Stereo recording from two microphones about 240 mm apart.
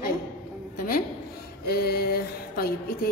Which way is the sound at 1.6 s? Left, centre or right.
Left.